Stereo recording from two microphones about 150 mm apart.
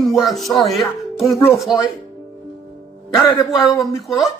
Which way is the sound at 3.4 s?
Centre (ahead or behind).